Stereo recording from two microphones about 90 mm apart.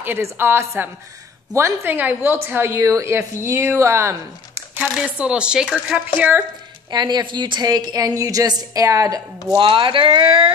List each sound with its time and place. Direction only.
0.0 s a woman's voice: 25° right (ahead or behind)
1.9 s a woman's voice: 20° right (ahead or behind)
4.9 s a woman's voice: 10° right (ahead or behind)
6.9 s a woman's voice: 55° right (ahead or behind)
9.6 s speech: 65° right (ahead or behind)